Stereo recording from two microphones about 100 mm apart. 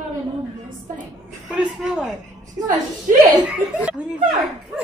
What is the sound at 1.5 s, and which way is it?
Speech, 5° right (ahead or behind).